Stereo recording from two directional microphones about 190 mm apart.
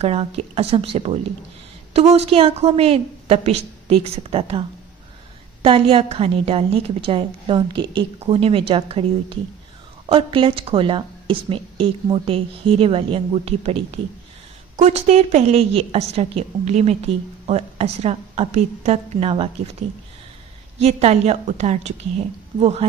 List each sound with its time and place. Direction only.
0.0 s a woman's voice: 30° right (ahead or behind)
14.8 s a woman's voice: 35° right (ahead or behind)
20.8 s a woman's voice: 35° right (ahead or behind)